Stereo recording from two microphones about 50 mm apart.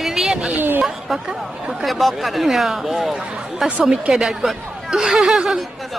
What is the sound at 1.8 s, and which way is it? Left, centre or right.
Speech, centre.